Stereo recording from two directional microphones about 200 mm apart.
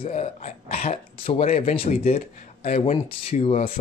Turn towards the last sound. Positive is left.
turn(degrees=30)  # may be behind; listen again after turning